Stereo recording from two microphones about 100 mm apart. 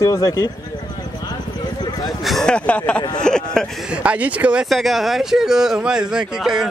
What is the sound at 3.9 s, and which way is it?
Speech, 15° right (ahead or behind).